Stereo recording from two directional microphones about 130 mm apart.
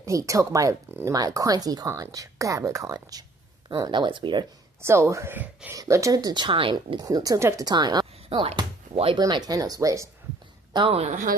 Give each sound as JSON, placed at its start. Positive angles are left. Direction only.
{"t": 0.0, "sound": "speech", "side_deg": -25}
{"t": 4.8, "sound": "speech", "side_deg": -20}
{"t": 9.2, "sound": "speech", "side_deg": -30}
{"t": 10.9, "sound": "a woman's voice", "side_deg": -55}